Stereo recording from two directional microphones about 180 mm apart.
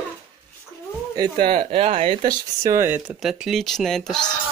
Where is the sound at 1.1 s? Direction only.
25° right (ahead or behind).